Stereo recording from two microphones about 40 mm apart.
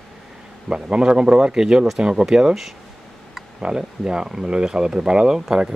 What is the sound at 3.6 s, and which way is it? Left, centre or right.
Speech, right.